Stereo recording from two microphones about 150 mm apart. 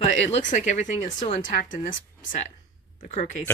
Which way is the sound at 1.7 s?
65° left (ahead or behind).